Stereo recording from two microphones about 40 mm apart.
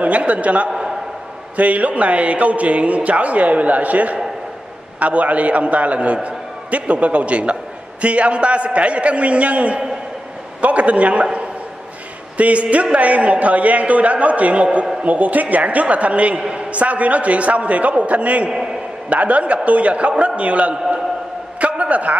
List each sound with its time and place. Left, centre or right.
0.0 s speech: right
0.7 s a sound: centre
1.6 s a man's voice: right
12.4 s speech: right
16.3 s a man's voice: centre
16.7 s speech: right
21.5 s a sound: right